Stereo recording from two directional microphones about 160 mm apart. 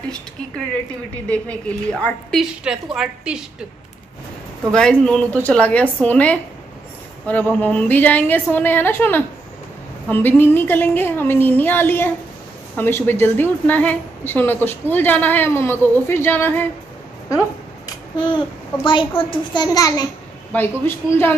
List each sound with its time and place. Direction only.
1.3 s a woman's voice: 10° left (ahead or behind)
2.6 s a woman's voice: 5° right (ahead or behind)
4.7 s a woman's voice: 5° left (ahead or behind)
17.3 s babbling: 20° left (ahead or behind)
18.9 s a child's voice: 30° left (ahead or behind)
20.5 s a woman's voice: 10° left (ahead or behind)